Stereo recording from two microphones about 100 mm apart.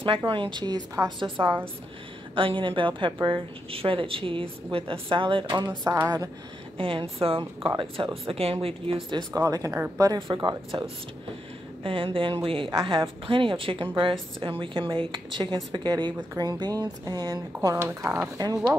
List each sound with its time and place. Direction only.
0.3 s speech: 55° right (ahead or behind)
5.9 s speech: 30° right (ahead or behind)
6.8 s speech: 65° right (ahead or behind)
9.3 s speech: 35° right (ahead or behind)
10.1 s speech: 50° right (ahead or behind)
11.8 s speech: 60° right (ahead or behind); by 18.3 s 20° right (ahead or behind)
18.4 s speech: 40° right (ahead or behind)